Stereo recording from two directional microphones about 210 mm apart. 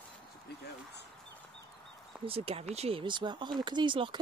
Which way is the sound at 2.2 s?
30° right (ahead or behind).